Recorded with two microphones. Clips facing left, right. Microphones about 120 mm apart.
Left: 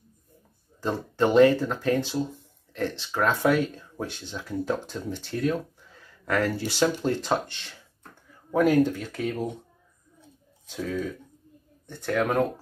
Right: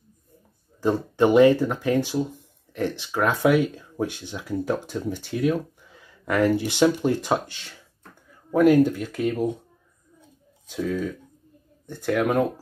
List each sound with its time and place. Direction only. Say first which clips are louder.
0.7 s speech: right 5 dB; 15° right (ahead or behind)
11.9 s speech: right 3 dB; 10° right (ahead or behind)